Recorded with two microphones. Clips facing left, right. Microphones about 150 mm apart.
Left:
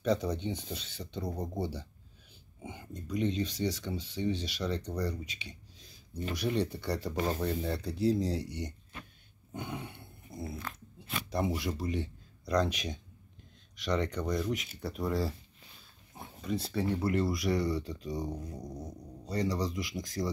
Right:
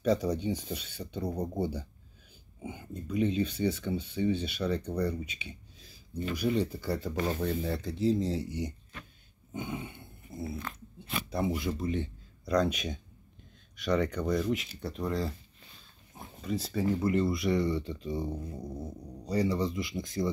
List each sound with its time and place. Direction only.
0.0 s speech: 10° right (ahead or behind)
6.4 s speech: 5° right (ahead or behind)
9.5 s a sound: centre (ahead or behind)
11.3 s speech: centre (ahead or behind)